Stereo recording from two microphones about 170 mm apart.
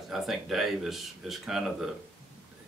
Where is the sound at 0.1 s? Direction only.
Centre (ahead or behind).